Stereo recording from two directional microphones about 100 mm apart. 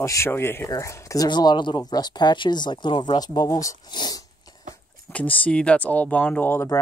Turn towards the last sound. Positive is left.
turn(degrees=20)  # may be behind; listen again after turning